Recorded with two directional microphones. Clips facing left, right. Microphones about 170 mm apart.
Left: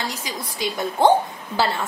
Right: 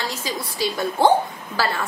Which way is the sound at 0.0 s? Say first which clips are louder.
Right 2 dB; 20° left (ahead or behind).